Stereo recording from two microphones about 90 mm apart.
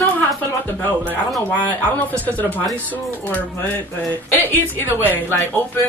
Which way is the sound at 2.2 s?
20° left (ahead or behind).